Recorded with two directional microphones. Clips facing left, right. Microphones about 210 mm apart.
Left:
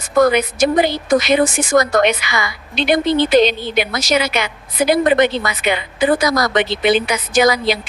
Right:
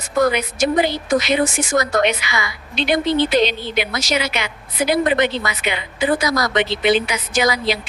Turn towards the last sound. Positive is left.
turn(degrees=45)  # may be behind; listen again after turning